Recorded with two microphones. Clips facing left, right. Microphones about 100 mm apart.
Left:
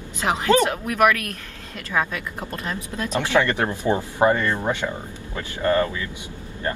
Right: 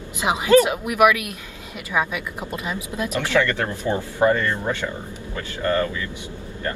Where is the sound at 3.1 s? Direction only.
20° left (ahead or behind).